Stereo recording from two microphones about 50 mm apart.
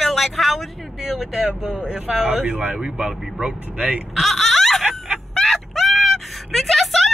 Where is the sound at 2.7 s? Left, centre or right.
Centre.